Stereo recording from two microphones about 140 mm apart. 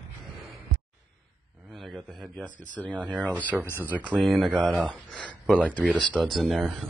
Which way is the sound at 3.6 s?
15° left (ahead or behind).